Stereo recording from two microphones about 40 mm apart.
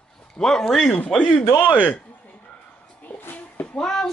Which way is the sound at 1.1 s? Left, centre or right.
Left.